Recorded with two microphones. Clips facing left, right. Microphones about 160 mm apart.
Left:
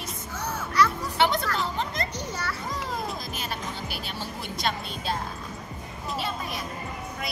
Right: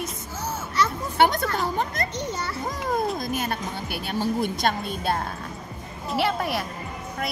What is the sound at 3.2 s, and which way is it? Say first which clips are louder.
Speech: right 7 dB; 55° right (ahead or behind).